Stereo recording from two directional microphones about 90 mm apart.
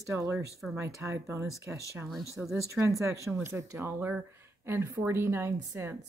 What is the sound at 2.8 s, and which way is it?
Speech, 35° right (ahead or behind).